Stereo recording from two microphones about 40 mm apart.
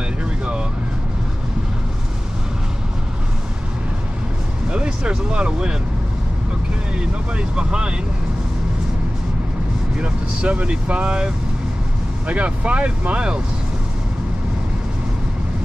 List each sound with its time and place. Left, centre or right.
4.6 s a sound: right
7.0 s speech: right
9.9 s speech: right
12.3 s speech: right